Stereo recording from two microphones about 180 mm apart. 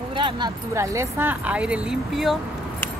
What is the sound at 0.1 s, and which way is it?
Keys jangling, 25° right (ahead or behind).